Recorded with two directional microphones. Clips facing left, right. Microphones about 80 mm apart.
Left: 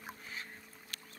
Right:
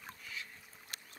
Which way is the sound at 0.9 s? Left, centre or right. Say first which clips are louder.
Even; right.